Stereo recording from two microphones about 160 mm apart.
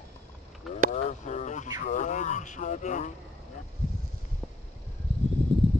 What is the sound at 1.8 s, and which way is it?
Speech, 50° left (ahead or behind).